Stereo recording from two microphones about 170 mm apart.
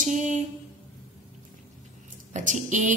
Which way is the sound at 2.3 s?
45° right (ahead or behind).